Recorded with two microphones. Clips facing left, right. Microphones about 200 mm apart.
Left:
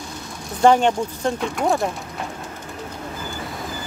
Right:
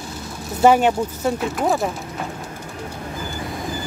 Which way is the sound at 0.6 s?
5° right (ahead or behind).